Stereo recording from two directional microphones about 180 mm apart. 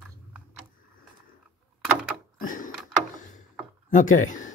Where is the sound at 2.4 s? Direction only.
50° left (ahead or behind).